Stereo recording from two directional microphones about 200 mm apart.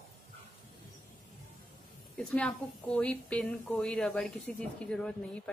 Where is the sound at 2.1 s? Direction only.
5° left (ahead or behind).